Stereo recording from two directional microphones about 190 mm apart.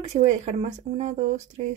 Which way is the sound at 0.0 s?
35° right (ahead or behind).